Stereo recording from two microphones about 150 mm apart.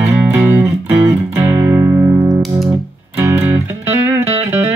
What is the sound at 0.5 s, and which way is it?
Music, 15° right (ahead or behind).